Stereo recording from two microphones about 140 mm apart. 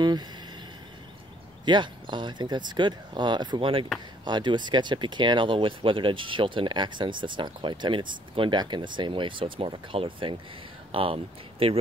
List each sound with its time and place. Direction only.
1.7 s speech: 35° right (ahead or behind)